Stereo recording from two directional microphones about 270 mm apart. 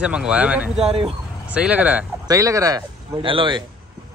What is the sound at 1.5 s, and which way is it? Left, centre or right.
Speech, centre.